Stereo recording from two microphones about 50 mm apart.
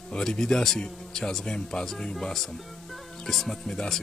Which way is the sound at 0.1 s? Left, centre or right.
Centre.